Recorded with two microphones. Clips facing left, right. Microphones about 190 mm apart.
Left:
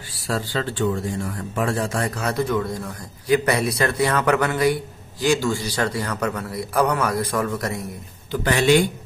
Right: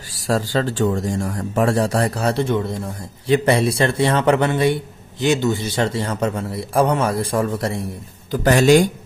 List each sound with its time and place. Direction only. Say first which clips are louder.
0.1 s speech: right 5 dB; 40° right (ahead or behind)
8.3 s speech: right 4 dB; 40° right (ahead or behind)